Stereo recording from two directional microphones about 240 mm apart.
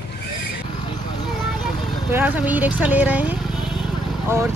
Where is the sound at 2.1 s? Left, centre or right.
Centre.